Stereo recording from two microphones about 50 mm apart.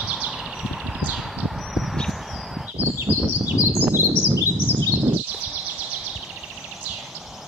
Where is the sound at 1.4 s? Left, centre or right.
Centre.